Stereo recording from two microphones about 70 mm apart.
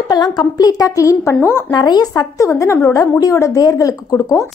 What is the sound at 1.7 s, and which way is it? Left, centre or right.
Speech, left.